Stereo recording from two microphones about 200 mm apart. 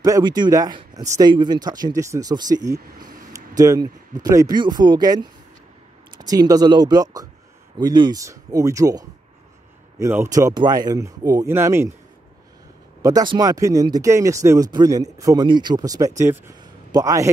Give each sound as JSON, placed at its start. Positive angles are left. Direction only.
{"t": 0.0, "sound": "speech", "side_deg": -20}
{"t": 13.0, "sound": "speech", "side_deg": -20}